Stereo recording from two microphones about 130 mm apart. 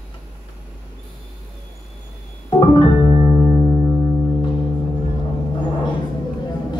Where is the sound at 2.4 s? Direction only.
35° left (ahead or behind).